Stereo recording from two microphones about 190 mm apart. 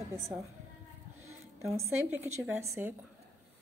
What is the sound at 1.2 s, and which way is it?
A woman's voice, 15° right (ahead or behind).